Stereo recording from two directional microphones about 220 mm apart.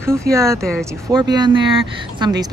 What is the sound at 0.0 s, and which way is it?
A woman's voice, 15° right (ahead or behind).